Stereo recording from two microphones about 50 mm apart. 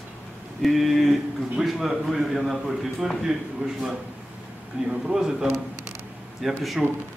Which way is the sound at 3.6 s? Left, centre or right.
Centre.